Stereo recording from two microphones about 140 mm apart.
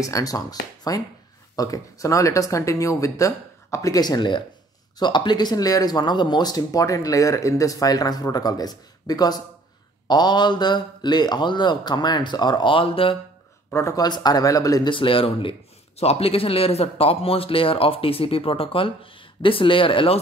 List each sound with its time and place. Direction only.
0.0 s speech: 25° left (ahead or behind); by 13.2 s 40° left (ahead or behind)
13.7 s speech: 20° left (ahead or behind)
15.0 s speech: 40° left (ahead or behind)